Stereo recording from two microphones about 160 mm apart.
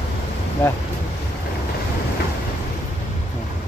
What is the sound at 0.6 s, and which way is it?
Speech, 15° left (ahead or behind).